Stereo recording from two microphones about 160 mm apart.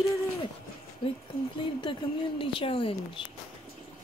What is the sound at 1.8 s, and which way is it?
A woman's voice, 30° left (ahead or behind).